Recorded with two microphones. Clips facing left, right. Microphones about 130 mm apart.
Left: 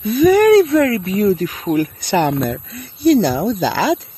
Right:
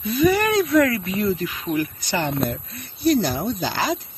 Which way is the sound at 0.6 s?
30° left (ahead or behind).